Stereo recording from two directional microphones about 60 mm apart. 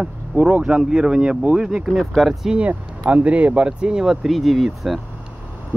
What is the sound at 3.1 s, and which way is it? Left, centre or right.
Speech, right.